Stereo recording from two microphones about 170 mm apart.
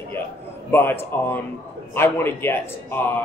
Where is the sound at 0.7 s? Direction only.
15° left (ahead or behind).